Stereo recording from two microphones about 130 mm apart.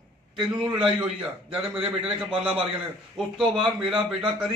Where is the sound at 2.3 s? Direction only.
45° right (ahead or behind).